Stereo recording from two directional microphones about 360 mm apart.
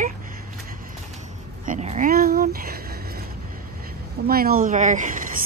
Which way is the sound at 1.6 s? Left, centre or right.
Centre.